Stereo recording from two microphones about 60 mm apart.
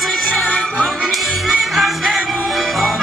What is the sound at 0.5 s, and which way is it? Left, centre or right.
Music, centre.